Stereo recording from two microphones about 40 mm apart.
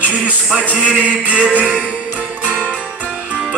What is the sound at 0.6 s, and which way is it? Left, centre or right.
Speech, right.